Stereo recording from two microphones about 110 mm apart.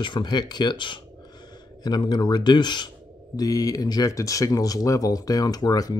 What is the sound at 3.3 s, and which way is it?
Speech, 30° left (ahead or behind).